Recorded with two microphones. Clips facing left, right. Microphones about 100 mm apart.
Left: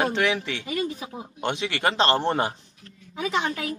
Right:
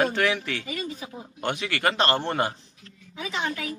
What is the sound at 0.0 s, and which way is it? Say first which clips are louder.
A man's voice: even; 20° left (ahead or behind).